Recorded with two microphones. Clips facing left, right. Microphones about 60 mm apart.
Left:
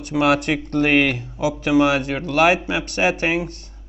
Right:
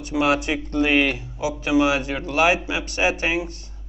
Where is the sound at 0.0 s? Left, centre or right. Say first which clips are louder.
Left 3 dB; left.